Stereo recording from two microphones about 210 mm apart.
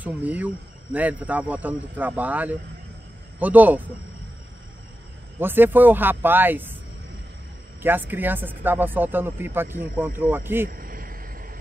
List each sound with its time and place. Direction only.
0.0 s speech: 5° right (ahead or behind)
5.4 s speech: 10° right (ahead or behind)
8.1 s speech: 10° right (ahead or behind)
10.7 s a sound: 40° right (ahead or behind)